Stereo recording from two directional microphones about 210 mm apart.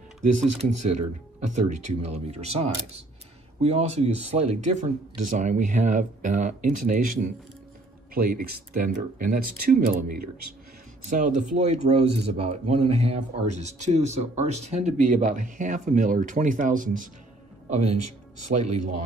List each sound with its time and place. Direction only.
0.2 s speech: 35° right (ahead or behind)
2.0 s speech: 30° right (ahead or behind)